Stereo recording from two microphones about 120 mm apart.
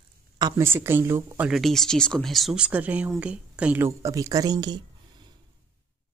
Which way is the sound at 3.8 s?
25° right (ahead or behind).